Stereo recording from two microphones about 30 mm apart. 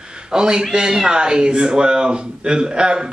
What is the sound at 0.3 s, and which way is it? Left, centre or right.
A man's voice, right.